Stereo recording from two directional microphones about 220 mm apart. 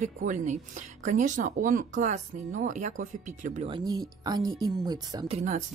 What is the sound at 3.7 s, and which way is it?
Speech, 15° right (ahead or behind).